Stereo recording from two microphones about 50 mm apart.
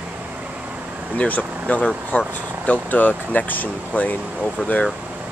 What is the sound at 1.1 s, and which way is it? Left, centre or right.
Speech, left.